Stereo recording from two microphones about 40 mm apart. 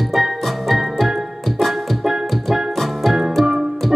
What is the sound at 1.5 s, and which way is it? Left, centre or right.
Keyboard, centre.